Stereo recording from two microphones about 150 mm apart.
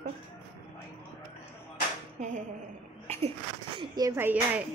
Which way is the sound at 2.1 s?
55° right (ahead or behind).